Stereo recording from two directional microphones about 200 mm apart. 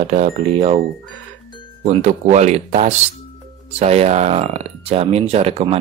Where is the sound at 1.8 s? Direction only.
35° right (ahead or behind).